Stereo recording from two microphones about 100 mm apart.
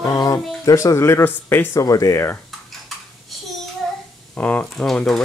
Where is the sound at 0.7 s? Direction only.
35° left (ahead or behind).